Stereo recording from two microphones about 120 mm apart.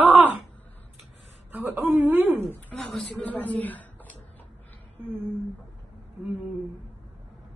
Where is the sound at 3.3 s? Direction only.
15° left (ahead or behind).